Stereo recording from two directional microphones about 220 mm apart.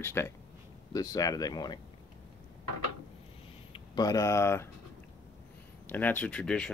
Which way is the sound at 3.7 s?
15° left (ahead or behind).